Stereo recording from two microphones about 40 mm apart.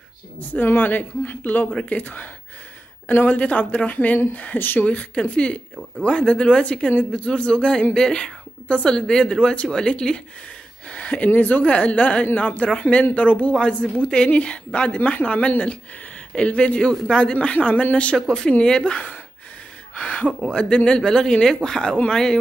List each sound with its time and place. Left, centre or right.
0.4 s a woman's voice: left
4.6 s speech: left
4.8 s a woman's voice: left
10.9 s a sound: left
11.3 s speech: left
11.6 s a woman's voice: left
18.1 s speech: centre
18.6 s a woman's voice: centre
20.0 s a woman's voice: left